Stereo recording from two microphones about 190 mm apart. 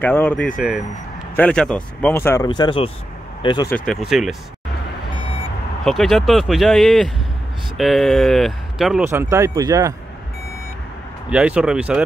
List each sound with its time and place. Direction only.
0.0 s speech: 10° left (ahead or behind)
2.4 s speech: 25° left (ahead or behind)
3.7 s speech: centre (ahead or behind)
5.9 s speech: centre (ahead or behind)
9.1 s speech: 15° right (ahead or behind)
11.2 s speech: 5° right (ahead or behind)